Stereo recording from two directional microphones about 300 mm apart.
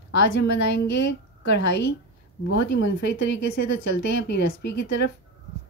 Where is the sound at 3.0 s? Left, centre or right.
Left.